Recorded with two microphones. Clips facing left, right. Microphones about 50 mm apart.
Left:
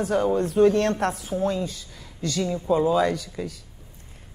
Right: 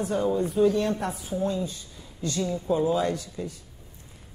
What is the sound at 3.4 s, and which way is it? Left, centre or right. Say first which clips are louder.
Speech: left 2 dB; left.